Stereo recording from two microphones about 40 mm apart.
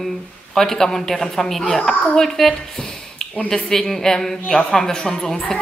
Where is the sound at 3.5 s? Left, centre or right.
Centre.